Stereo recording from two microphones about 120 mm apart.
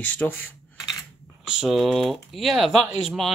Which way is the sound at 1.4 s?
5° right (ahead or behind).